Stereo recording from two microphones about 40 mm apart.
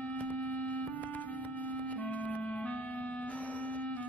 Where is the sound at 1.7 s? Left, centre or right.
Left.